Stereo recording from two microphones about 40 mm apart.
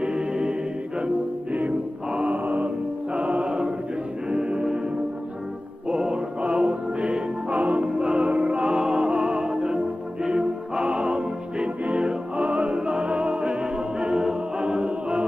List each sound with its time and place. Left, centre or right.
0.0 s choir: right
1.5 s music: right
2.1 s mantra: right
3.1 s music: right
5.9 s music: right
7.5 s music: right
7.8 s music: right
12.7 s music: right